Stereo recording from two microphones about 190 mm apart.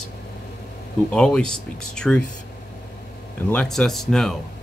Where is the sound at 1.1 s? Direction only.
5° left (ahead or behind).